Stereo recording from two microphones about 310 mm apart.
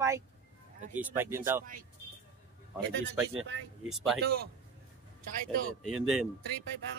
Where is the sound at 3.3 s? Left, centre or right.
Right.